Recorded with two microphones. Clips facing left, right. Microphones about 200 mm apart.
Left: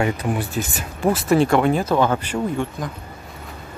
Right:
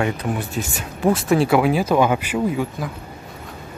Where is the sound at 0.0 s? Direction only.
5° left (ahead or behind).